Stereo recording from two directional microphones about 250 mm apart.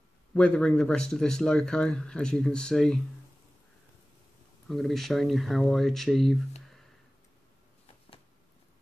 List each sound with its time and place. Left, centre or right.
0.3 s speech: centre
4.6 s speech: centre